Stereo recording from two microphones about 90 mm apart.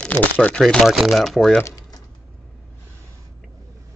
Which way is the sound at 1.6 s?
40° left (ahead or behind).